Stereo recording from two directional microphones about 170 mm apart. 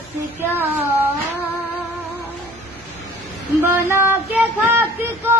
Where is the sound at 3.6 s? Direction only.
15° right (ahead or behind).